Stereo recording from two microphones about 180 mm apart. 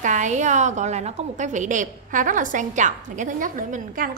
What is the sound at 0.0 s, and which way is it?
A woman's voice, 40° right (ahead or behind).